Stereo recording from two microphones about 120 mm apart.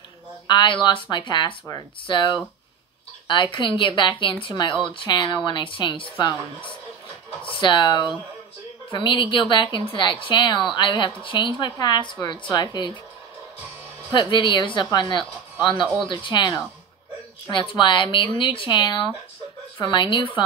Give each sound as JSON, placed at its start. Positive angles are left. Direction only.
{"t": 0.5, "sound": "a woman's voice", "side_deg": 40}
{"t": 14.1, "sound": "a woman's voice", "side_deg": 40}